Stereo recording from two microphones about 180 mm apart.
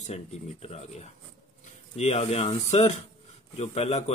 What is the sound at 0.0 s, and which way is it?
Speech, 35° left (ahead or behind).